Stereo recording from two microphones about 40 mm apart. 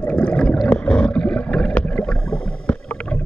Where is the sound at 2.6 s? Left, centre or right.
Left.